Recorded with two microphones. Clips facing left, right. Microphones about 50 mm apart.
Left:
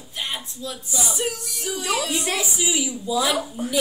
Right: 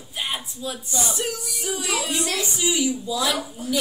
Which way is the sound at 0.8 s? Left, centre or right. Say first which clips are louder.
Left 1 dB; centre.